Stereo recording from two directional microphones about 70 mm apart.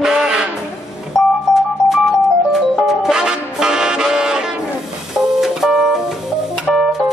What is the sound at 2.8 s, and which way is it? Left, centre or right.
Music, centre.